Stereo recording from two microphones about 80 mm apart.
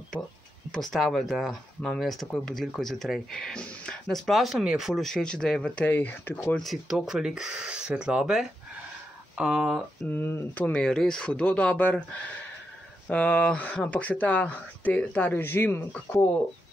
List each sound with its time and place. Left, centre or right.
0.7 s speech: centre
4.3 s speech: centre
5.0 s a man's voice: centre
5.9 s speech: left
6.5 s speech: centre
10.0 s speech: left
10.8 s a man's voice: centre
13.1 s speech: centre